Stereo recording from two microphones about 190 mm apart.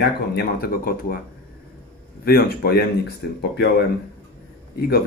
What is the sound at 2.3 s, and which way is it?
Speech, 55° left (ahead or behind).